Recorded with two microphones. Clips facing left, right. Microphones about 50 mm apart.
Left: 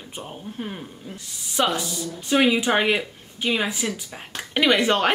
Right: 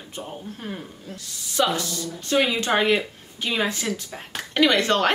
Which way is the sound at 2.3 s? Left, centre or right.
Centre.